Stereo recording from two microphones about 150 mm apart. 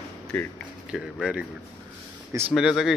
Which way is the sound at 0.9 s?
5° right (ahead or behind).